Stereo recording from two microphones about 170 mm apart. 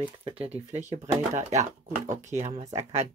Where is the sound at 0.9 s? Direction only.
45° right (ahead or behind).